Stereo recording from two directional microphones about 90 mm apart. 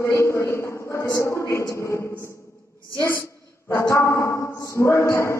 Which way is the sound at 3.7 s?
30° left (ahead or behind).